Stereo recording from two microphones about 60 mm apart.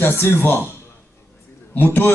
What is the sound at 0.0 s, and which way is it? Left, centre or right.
Speech, left.